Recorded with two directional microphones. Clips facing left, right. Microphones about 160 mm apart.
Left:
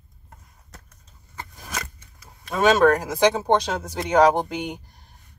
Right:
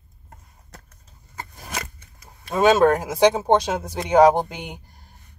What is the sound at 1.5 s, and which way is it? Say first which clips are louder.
Scissors: right 1 dB; 30° right (ahead or behind).